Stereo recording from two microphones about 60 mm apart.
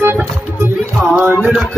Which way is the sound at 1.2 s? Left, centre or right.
Right.